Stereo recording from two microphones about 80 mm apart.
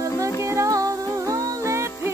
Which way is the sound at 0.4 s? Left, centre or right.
Right.